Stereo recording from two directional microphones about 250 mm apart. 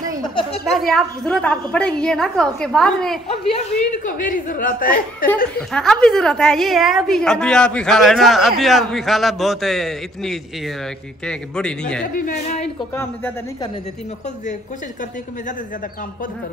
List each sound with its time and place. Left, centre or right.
0.7 s a woman's voice: centre
4.0 s a woman's voice: left
5.6 s a woman's voice: centre
12.1 s a woman's voice: left
12.9 s speech: centre